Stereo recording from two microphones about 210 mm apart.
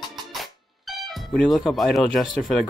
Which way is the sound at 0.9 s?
Centre (ahead or behind).